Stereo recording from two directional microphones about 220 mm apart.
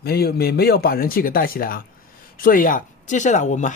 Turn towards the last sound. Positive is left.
turn(degrees=35)  # may be behind; listen again after turning